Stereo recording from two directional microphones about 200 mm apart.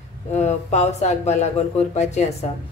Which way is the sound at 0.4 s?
35° left (ahead or behind).